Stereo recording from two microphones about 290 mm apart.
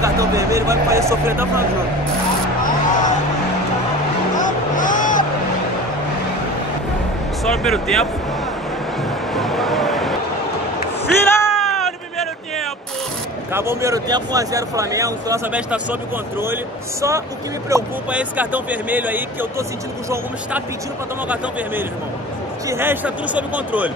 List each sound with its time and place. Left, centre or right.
0.0 s speech: centre
2.6 s a sound: left
4.4 s music: left
7.4 s speech: centre
9.3 s a sound: centre
11.2 s music: centre
13.5 s speech: centre
17.6 s speech: centre
22.7 s speech: centre